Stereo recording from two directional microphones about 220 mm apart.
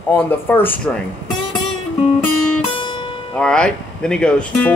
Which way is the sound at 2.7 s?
20° left (ahead or behind).